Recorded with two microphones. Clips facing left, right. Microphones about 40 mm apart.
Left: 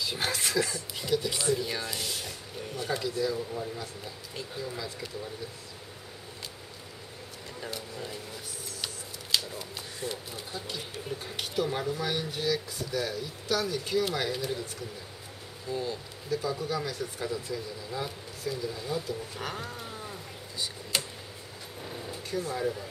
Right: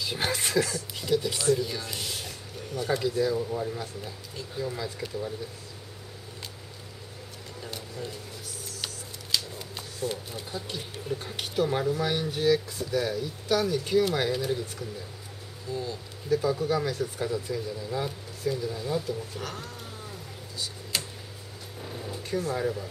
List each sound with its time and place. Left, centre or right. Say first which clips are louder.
0.0 s speech: right 2 dB; centre
0.6 s speech: right 3 dB; centre
1.5 s speech: right 4 dB; centre
1.9 s speech: even; centre
9.3 s shuffling cards: left 1 dB; centre
10.0 s speech: right 5 dB; centre
15.7 s speech: even; centre
16.3 s speech: right 6 dB; centre
19.3 s cat: left 1 dB; centre
21.8 s vehicle: right 2 dB; centre